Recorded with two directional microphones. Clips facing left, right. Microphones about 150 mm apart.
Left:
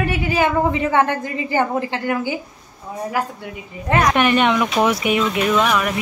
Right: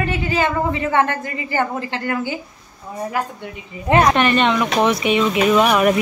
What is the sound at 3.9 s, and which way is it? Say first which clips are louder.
Speech: right 3 dB; 30° right (ahead or behind).